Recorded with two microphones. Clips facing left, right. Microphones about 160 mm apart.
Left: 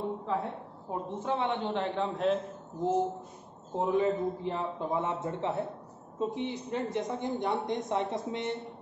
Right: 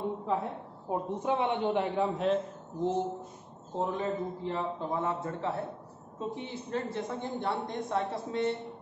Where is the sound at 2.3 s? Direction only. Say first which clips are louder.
Left 1 dB; centre (ahead or behind).